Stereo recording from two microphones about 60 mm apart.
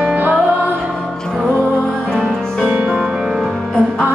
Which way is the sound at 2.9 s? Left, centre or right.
Centre.